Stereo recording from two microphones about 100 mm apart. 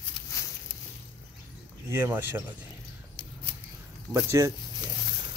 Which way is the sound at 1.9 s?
25° right (ahead or behind).